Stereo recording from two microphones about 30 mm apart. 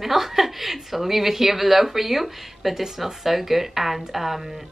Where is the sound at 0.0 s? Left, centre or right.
Centre.